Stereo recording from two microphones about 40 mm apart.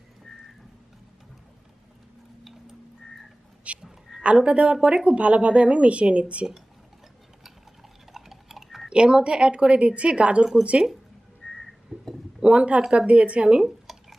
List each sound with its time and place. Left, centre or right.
3.7 s frog: right
4.4 s a woman's voice: right
8.1 s a sound: centre
8.8 s a woman's voice: right
11.4 s whistling: centre
12.4 s a woman's voice: right
13.6 s speech: centre